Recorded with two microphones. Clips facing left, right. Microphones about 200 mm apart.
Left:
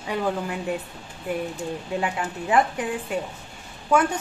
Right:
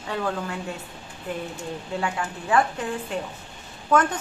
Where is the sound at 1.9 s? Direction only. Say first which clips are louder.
Left 1 dB; 20° left (ahead or behind).